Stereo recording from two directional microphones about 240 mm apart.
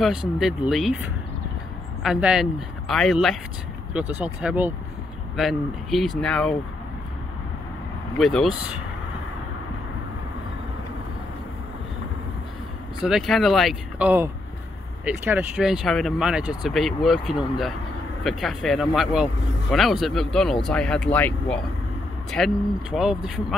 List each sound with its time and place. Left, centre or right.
0.0 s speech: centre
2.0 s speech: centre
8.2 s speech: centre
13.0 s speech: centre